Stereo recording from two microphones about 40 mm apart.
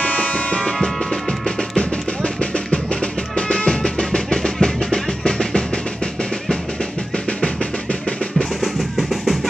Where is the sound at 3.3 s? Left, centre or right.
Left.